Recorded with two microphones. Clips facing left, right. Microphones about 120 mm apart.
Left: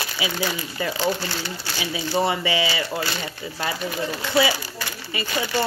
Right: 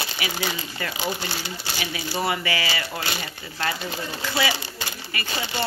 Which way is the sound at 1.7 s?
20° left (ahead or behind).